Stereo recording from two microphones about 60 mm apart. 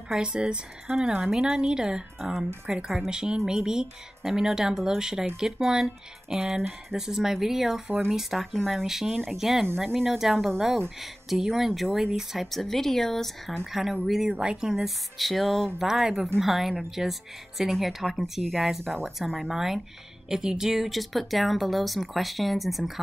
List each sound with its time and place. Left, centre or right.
0.1 s speech: centre
2.7 s speech: centre
3.1 s speech: centre
15.1 s speech: centre